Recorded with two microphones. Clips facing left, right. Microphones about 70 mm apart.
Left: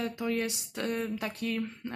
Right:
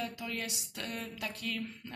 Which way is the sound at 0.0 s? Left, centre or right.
Left.